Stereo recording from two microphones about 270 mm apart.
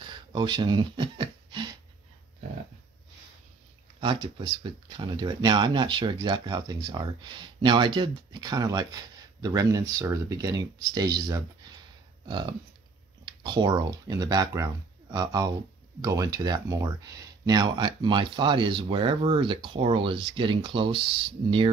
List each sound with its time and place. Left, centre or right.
0.0 s a sound: centre
4.0 s speech: centre
13.2 s speech: centre